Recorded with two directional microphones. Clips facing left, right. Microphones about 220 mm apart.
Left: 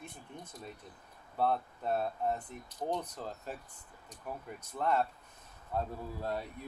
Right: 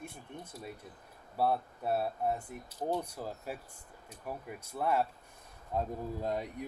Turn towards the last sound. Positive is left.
turn(degrees=-15)  # may be behind; listen again after turning